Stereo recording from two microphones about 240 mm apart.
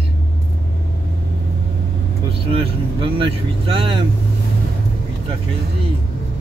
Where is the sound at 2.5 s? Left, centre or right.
Right.